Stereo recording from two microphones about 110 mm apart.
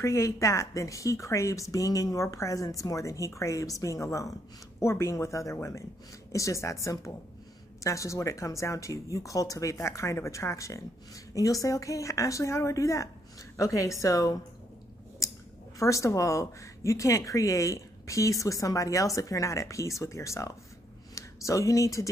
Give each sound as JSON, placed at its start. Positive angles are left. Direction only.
{"t": 0.0, "sound": "speech", "side_deg": 25}
{"t": 15.2, "sound": "a sound", "side_deg": 30}
{"t": 15.8, "sound": "speech", "side_deg": 30}